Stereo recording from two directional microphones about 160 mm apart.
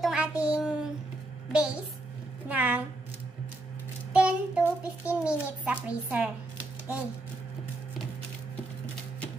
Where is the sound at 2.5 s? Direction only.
10° right (ahead or behind).